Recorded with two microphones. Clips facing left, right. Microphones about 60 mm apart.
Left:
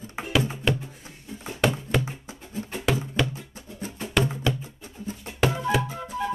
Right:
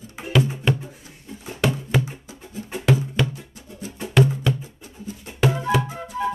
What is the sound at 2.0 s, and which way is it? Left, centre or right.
Music, left.